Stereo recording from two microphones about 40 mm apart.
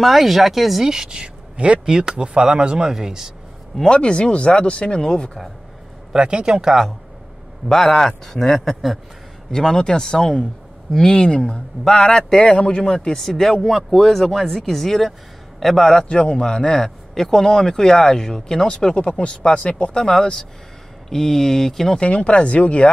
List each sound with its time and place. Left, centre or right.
0.0 s speech: centre
3.8 s speech: left
6.1 s speech: right
6.5 s speech: centre
7.6 s speech: centre
9.5 s speech: centre
13.2 s speech: centre
16.1 s speech: left
22.0 s speech: left